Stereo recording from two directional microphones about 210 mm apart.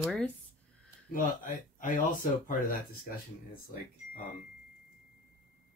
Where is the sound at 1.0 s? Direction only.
40° left (ahead or behind).